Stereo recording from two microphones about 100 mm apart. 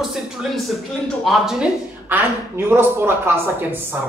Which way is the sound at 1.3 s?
5° right (ahead or behind).